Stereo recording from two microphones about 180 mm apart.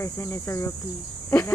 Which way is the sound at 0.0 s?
15° left (ahead or behind).